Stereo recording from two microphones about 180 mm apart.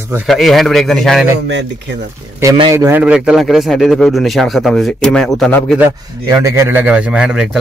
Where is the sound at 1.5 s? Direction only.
80° right.